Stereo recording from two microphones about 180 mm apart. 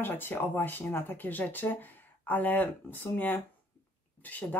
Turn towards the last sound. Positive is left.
turn(degrees=10)  # may be behind; listen again after turning